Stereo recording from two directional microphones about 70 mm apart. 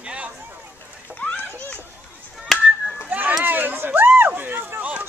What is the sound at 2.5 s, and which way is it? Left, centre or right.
Chop, centre.